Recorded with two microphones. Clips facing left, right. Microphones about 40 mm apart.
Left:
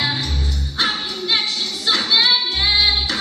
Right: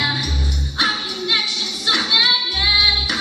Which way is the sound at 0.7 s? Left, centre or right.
Centre.